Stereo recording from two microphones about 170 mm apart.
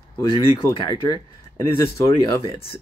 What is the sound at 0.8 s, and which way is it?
Speech, 25° left (ahead or behind).